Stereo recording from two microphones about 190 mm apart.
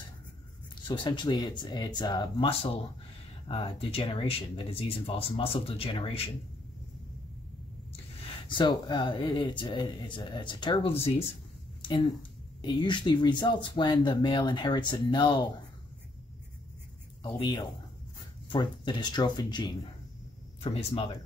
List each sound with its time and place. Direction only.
0.8 s speech: 25° left (ahead or behind)
8.5 s speech: 25° left (ahead or behind)
12.6 s speech: 25° left (ahead or behind)
17.2 s speech: 25° left (ahead or behind)